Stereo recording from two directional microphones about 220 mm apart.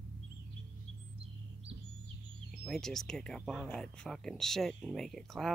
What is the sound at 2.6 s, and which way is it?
Speech, centre (ahead or behind).